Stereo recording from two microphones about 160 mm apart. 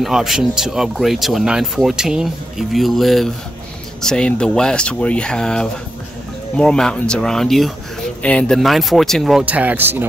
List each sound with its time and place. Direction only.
0.0 s speech: centre (ahead or behind)